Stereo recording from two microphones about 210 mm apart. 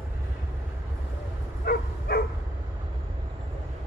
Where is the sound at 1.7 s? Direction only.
50° left (ahead or behind).